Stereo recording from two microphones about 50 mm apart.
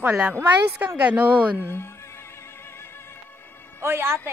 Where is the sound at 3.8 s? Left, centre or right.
Right.